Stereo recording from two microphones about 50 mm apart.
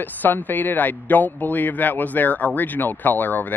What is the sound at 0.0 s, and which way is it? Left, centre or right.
A man's voice, left.